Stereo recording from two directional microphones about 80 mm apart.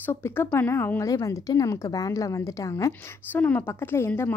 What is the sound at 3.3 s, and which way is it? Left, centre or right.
Speech, left.